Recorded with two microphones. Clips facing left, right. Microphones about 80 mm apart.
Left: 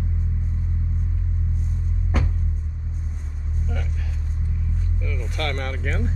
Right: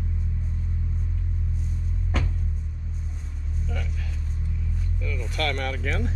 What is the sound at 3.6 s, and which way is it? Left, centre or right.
Vehicle, centre.